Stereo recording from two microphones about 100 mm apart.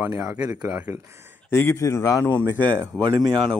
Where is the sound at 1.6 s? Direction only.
30° left (ahead or behind).